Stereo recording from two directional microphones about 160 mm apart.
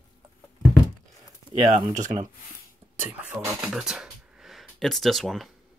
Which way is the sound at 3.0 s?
10° right (ahead or behind).